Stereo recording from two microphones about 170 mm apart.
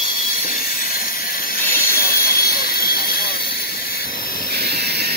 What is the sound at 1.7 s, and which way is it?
Hiss, 60° left (ahead or behind).